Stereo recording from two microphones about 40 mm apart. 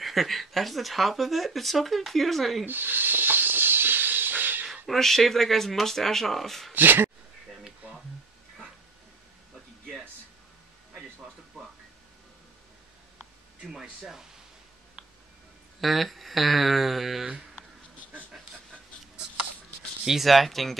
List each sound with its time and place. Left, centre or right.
0.0 s speech: centre
2.6 s hiss: right
4.8 s speech: centre
6.7 s speech: right
13.7 s speech: centre
15.8 s speech: centre
20.1 s speech: centre